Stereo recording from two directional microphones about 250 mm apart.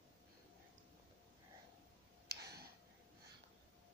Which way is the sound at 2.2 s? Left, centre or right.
Right.